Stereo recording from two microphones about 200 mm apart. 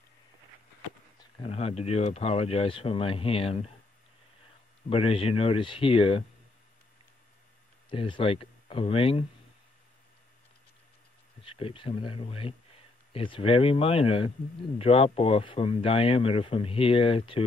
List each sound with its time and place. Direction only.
1.4 s speech: 30° left (ahead or behind)
4.8 s speech: 30° left (ahead or behind)
7.9 s speech: 25° left (ahead or behind)
11.4 s a man's voice: 25° left (ahead or behind)